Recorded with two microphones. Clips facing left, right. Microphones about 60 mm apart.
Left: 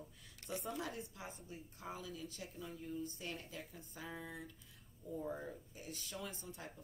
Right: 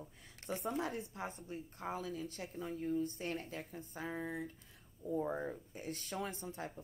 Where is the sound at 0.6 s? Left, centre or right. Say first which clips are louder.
Right 7 dB; right.